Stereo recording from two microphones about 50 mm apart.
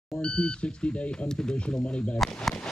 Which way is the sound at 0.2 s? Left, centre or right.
Centre.